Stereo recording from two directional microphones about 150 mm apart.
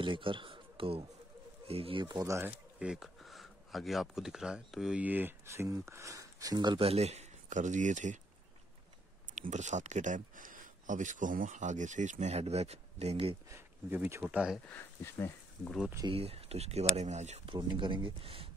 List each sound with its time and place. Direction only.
0.0 s speech: 35° right (ahead or behind)
6.9 s speech: 45° right (ahead or behind)
9.3 s speech: 55° right (ahead or behind)
13.5 s speech: 15° right (ahead or behind)
14.7 s speech: 15° left (ahead or behind)
16.1 s speech: 40° right (ahead or behind)
17.5 s speech: 30° right (ahead or behind)